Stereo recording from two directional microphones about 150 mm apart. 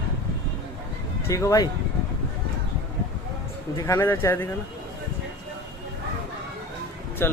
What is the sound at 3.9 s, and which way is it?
Speech, 15° left (ahead or behind).